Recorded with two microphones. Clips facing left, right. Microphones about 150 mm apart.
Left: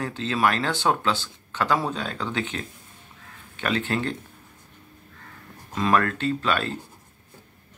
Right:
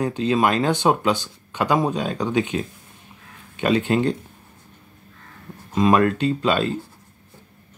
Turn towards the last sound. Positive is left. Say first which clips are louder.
# right 5 dB
turn(degrees=-20)  # may be behind; listen again after turning